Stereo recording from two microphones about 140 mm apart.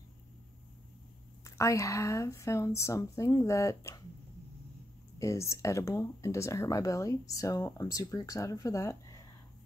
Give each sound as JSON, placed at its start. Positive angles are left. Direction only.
{"t": 1.4, "sound": "speech", "side_deg": 20}
{"t": 5.2, "sound": "speech", "side_deg": 20}